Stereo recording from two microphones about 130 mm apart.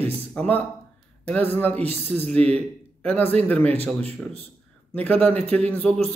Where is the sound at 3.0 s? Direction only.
10° left (ahead or behind).